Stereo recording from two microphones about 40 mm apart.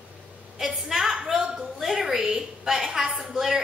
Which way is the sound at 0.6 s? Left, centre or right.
Centre.